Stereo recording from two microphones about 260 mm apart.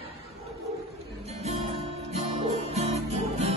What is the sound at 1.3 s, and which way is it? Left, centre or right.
Music, right.